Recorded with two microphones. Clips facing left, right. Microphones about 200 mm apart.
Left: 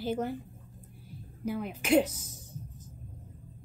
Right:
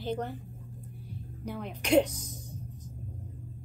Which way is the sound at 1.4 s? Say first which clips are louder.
Left 2 dB; 5° left (ahead or behind).